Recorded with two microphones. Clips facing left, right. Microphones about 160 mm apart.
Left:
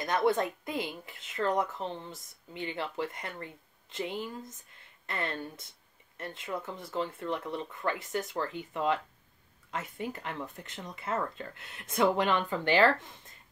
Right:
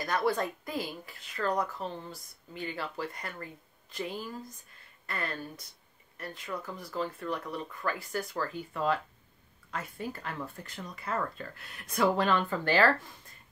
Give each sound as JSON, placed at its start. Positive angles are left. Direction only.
{"t": 0.0, "sound": "speech", "side_deg": 20}